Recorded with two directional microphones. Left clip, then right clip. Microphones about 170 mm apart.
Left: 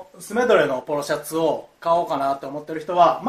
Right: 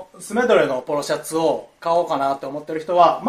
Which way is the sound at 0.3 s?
Centre (ahead or behind).